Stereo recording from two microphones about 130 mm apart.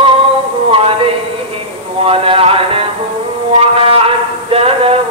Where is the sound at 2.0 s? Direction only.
45° right (ahead or behind).